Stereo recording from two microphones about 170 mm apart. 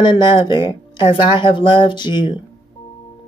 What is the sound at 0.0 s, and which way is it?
Speech, 25° left (ahead or behind).